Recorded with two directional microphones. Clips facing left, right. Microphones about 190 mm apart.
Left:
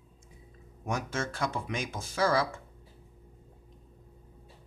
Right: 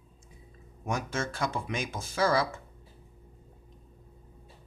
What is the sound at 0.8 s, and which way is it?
Speech, 10° right (ahead or behind).